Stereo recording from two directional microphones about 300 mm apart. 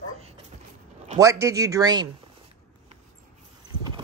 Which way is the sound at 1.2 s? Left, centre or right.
Centre.